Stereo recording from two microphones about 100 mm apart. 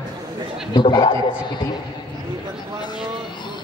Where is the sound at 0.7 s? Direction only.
55° left (ahead or behind).